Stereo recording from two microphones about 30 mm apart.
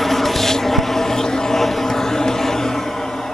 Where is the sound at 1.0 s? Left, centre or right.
Centre.